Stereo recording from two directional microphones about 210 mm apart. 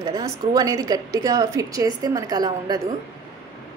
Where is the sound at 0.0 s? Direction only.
15° right (ahead or behind).